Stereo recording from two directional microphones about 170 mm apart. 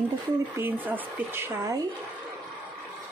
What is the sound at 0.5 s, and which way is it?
Speech, 10° right (ahead or behind).